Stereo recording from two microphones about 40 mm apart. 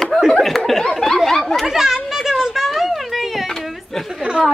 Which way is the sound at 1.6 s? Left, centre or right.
Centre.